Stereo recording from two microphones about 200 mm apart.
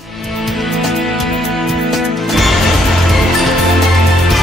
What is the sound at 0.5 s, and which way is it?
Music, centre (ahead or behind).